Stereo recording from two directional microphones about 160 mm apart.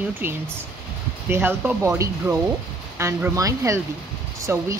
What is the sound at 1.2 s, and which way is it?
Speech, 15° right (ahead or behind).